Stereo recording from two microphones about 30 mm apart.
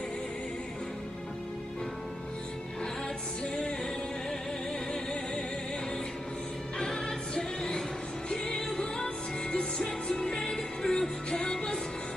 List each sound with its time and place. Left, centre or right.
6.8 s music: left